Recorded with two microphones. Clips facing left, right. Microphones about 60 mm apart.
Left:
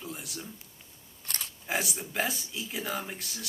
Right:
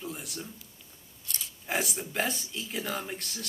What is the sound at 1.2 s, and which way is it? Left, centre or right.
Scissors, left.